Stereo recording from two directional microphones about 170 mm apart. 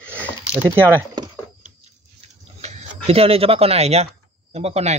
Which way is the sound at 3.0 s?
35° right (ahead or behind).